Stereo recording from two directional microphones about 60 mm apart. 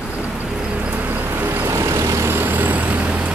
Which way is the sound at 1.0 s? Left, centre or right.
Right.